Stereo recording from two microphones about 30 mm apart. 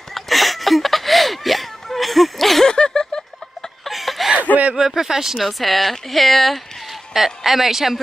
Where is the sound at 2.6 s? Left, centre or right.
Left.